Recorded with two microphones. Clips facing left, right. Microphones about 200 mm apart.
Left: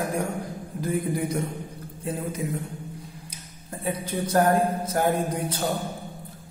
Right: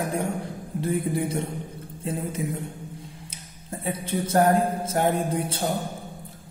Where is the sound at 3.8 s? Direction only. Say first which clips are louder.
Even; 25° right (ahead or behind).